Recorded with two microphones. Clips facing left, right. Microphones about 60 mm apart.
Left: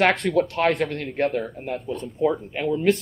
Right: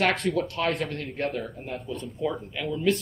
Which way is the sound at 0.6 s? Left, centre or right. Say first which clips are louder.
Left 6 dB; left.